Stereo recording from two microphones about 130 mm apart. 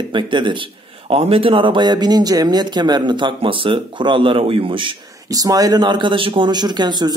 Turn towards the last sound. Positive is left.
turn(degrees=-35)  # may be behind; listen again after turning